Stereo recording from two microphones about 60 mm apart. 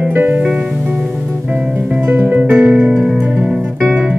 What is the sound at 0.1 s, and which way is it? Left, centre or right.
Music, right.